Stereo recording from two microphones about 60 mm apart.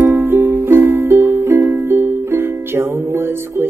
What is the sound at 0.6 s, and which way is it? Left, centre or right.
Music, right.